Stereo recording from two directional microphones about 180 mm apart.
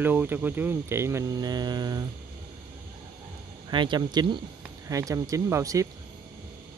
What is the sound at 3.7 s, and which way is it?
Speech, 25° right (ahead or behind).